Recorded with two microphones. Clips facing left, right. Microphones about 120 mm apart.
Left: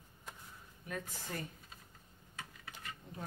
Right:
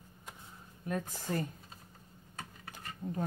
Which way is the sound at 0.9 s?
40° right (ahead or behind).